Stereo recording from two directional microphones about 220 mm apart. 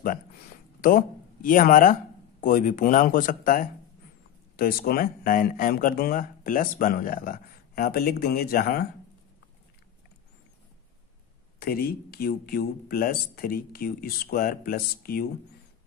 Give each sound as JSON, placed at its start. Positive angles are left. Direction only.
{"t": 0.7, "sound": "speech", "side_deg": 40}
{"t": 11.6, "sound": "speech", "side_deg": 45}